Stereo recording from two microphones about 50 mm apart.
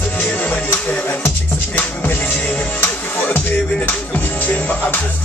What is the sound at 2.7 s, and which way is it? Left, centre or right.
Music, left.